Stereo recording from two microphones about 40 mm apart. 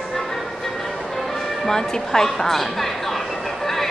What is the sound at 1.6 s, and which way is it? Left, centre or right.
Speech, centre.